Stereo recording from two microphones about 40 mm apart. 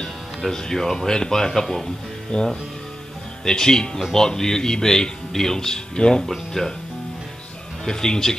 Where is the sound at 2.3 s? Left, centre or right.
Left.